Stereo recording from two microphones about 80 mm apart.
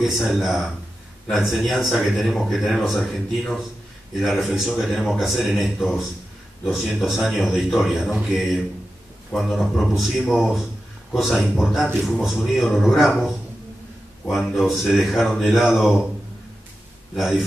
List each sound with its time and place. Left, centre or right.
0.0 s a man's voice: centre
17.1 s a man's voice: centre